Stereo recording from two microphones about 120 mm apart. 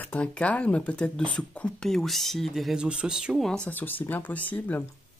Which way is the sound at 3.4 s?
10° left (ahead or behind).